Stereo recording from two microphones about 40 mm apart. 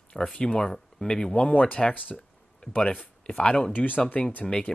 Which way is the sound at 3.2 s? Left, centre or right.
Left.